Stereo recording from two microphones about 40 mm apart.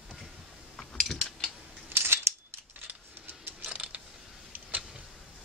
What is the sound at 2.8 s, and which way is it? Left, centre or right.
Vehicle, right.